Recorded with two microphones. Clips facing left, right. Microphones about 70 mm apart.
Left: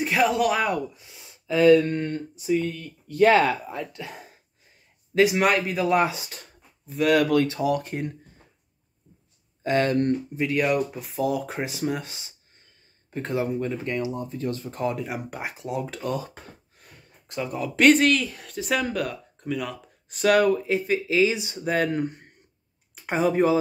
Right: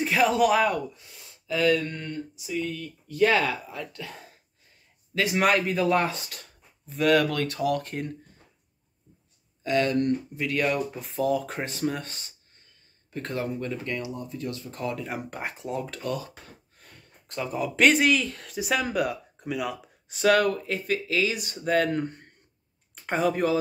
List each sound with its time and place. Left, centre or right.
0.0 s speech: centre
1.5 s speech: left
3.9 s speech: centre
5.3 s speech: centre
6.9 s speech: centre
7.4 s speech: centre
9.6 s speech: left
10.4 s speech: centre
15.0 s speech: centre
15.8 s speech: centre
16.7 s speech: centre
20.3 s speech: centre
23.1 s speech: centre